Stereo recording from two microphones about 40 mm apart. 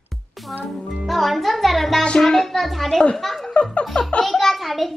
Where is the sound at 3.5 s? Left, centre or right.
Left.